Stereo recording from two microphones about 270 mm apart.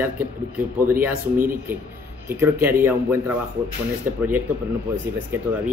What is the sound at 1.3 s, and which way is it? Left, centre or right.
Speech, right.